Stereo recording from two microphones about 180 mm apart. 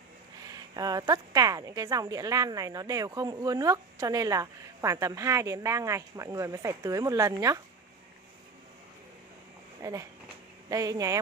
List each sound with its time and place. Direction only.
0.5 s speech: 20° right (ahead or behind)
9.8 s a sound: 20° right (ahead or behind)
10.7 s speech: 20° right (ahead or behind)